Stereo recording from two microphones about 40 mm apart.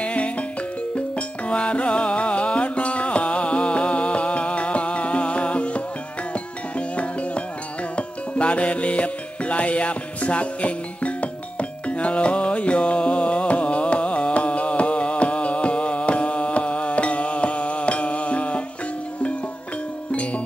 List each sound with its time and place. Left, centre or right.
0.0 s music: left
1.5 s music: left
8.4 s music: left